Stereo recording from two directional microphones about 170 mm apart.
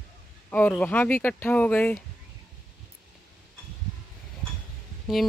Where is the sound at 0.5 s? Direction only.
10° left (ahead or behind).